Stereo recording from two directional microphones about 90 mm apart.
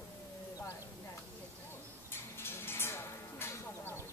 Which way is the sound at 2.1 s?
25° left (ahead or behind).